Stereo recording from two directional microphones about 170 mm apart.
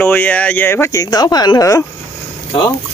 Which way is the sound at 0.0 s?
10° left (ahead or behind).